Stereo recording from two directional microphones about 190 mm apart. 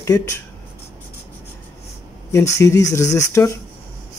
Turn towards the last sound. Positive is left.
turn(degrees=15)  # may be behind; listen again after turning